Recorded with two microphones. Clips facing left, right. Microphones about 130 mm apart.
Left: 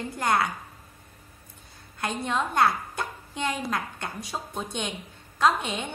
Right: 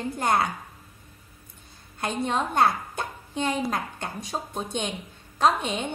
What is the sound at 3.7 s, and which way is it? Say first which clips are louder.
A woman's voice: right 1 dB; 25° right (ahead or behind).